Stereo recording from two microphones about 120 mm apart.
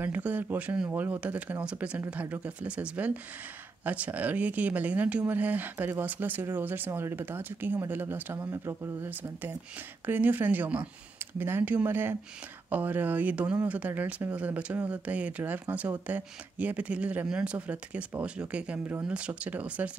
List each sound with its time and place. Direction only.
0.0 s speech: 15° right (ahead or behind)